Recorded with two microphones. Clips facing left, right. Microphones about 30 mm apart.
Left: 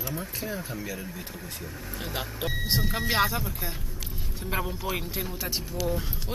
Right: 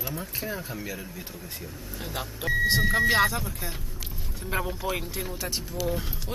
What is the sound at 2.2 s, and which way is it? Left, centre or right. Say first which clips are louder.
Speech: right 7 dB; centre.